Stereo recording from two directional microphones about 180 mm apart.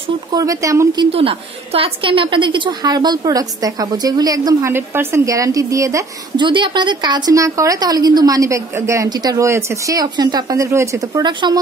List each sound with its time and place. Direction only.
0.3 s a woman's voice: 20° right (ahead or behind)
1.1 s a woman's voice: 30° right (ahead or behind)